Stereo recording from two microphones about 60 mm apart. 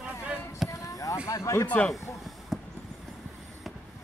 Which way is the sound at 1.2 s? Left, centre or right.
Left.